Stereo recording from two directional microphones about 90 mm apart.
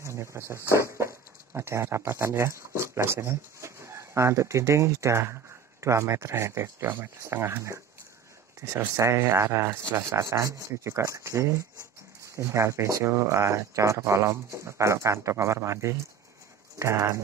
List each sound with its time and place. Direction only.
0.0 s speech: 30° right (ahead or behind)